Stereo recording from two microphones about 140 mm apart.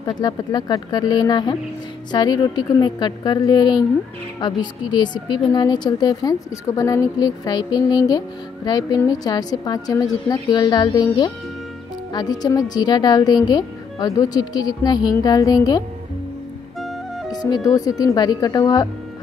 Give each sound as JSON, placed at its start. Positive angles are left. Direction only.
{"t": 0.2, "sound": "a woman's voice", "side_deg": 30}
{"t": 17.3, "sound": "music", "side_deg": 30}
{"t": 17.6, "sound": "speech", "side_deg": 25}